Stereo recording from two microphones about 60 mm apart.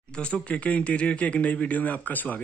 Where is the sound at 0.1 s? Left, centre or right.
Centre.